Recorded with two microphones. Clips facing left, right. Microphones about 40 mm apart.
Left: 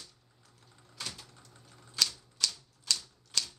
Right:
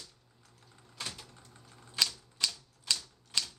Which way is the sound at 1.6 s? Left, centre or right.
Centre.